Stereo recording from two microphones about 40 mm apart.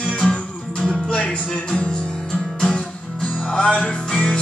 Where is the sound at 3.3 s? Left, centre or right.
Left.